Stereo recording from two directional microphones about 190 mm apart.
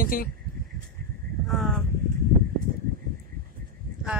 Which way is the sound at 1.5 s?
Centre (ahead or behind).